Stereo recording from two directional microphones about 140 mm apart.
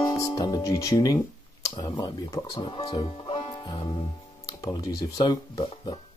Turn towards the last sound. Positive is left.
turn(degrees=30)  # may be behind; listen again after turning